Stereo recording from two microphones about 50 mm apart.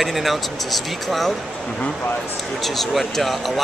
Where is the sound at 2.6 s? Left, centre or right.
Centre.